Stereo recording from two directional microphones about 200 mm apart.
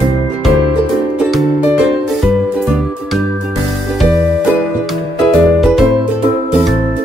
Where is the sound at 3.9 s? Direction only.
Centre (ahead or behind).